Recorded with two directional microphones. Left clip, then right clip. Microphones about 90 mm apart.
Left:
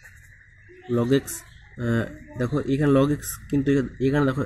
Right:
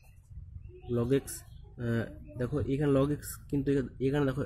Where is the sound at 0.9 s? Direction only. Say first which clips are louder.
Left 7 dB; 15° left (ahead or behind).